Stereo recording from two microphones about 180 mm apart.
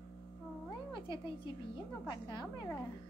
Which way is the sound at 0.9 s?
25° left (ahead or behind).